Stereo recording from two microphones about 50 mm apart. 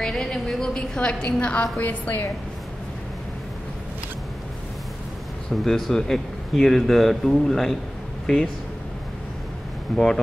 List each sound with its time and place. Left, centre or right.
0.0 s a sound: centre
0.7 s a woman's voice: left
1.8 s a woman's voice: left
5.6 s a man's voice: centre
9.9 s a man's voice: centre